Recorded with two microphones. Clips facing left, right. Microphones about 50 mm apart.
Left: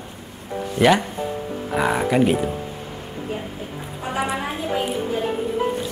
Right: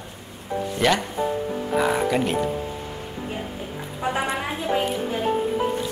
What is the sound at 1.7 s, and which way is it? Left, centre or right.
Speech, centre.